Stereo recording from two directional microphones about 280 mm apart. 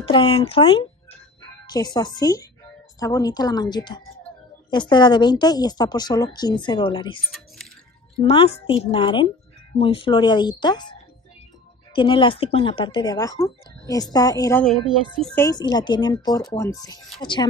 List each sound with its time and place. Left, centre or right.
0.1 s a woman's voice: centre
8.2 s a woman's voice: left